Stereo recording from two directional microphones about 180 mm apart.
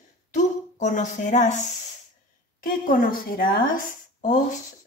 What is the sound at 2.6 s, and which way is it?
A woman's voice, 55° left (ahead or behind).